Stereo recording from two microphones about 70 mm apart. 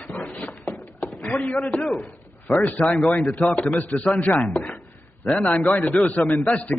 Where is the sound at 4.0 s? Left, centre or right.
Centre.